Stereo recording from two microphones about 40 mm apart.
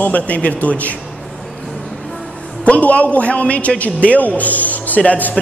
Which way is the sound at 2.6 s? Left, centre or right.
Left.